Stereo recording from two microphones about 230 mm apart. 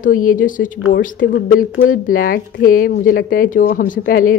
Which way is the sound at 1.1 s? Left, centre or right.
Left.